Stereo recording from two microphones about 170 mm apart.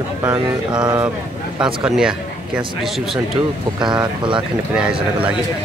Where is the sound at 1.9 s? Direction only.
5° right (ahead or behind).